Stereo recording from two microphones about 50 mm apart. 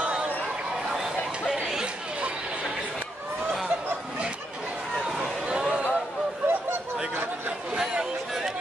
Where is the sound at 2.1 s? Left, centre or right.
Right.